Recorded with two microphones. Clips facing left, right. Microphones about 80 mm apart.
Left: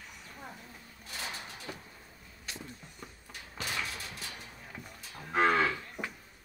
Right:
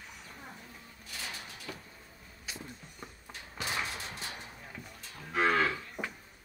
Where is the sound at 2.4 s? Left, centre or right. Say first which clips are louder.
Even; centre.